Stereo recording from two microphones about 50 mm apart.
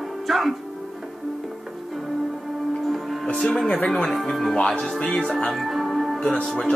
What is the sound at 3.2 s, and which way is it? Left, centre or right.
Speech, centre.